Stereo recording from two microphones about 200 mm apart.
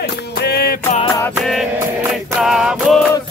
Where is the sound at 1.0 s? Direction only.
15° left (ahead or behind).